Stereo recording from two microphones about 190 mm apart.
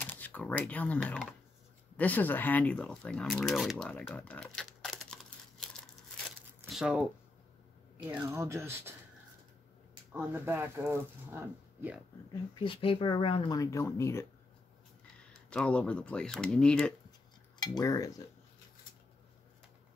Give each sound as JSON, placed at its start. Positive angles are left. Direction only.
{"t": 0.0, "sound": "speech", "side_deg": 10}
{"t": 6.7, "sound": "speech", "side_deg": -5}
{"t": 8.1, "sound": "speech", "side_deg": -10}
{"t": 10.1, "sound": "speech", "side_deg": -10}
{"t": 12.3, "sound": "speech", "side_deg": 25}
{"t": 15.5, "sound": "speech", "side_deg": 5}
{"t": 17.6, "sound": "speech", "side_deg": 20}